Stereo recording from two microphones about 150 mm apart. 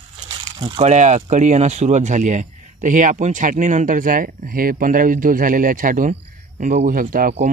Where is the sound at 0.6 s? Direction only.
45° right (ahead or behind); by 7.3 s 70° right (ahead or behind).